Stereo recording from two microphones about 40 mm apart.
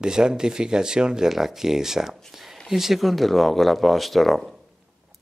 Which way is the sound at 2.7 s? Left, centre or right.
Centre.